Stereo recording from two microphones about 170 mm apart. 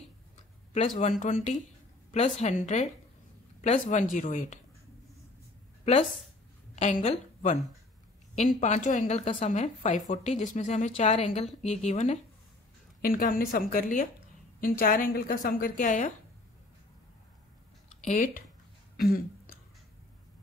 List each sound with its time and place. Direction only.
0.7 s a woman's voice: 40° left (ahead or behind)
6.7 s a woman's voice: 40° left (ahead or behind)
13.0 s a woman's voice: 55° left (ahead or behind)
18.0 s a woman's voice: 50° left (ahead or behind)
18.9 s throat clearing: 60° left (ahead or behind)